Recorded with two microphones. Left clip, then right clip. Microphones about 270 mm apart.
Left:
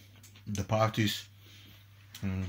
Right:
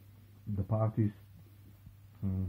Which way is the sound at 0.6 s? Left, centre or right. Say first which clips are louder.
Left 7 dB; left.